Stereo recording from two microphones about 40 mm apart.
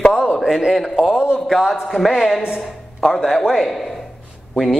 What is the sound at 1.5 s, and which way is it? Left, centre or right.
A man's voice, centre.